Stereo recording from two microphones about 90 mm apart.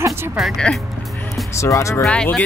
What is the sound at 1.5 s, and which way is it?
Speech, 35° left (ahead or behind).